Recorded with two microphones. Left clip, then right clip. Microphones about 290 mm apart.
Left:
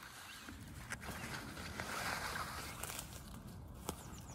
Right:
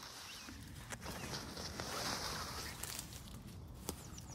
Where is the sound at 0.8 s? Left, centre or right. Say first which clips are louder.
Left 1 dB; centre.